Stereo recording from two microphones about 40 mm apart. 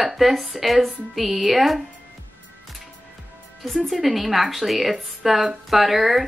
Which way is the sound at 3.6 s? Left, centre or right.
Centre.